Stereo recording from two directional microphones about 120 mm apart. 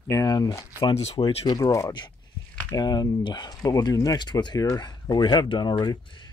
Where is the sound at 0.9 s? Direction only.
60° left (ahead or behind).